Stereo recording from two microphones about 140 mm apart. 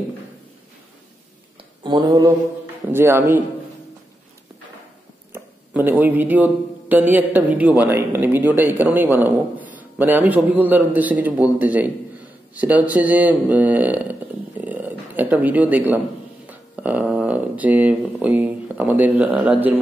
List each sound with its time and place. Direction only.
1.8 s speech: 35° right (ahead or behind)
2.9 s speech: 15° right (ahead or behind)
5.3 s speech: 15° right (ahead or behind)
14.6 s a sound: 10° right (ahead or behind)
16.4 s speech: 10° right (ahead or behind)